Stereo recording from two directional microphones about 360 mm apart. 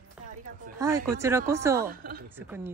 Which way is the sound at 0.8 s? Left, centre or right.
Centre.